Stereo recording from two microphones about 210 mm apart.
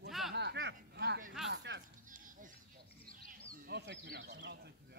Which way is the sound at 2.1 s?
40° right (ahead or behind).